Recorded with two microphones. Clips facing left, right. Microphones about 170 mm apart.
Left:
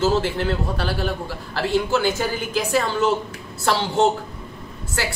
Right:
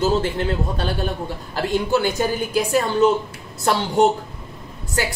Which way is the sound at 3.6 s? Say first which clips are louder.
Right 2 dB; 15° right (ahead or behind).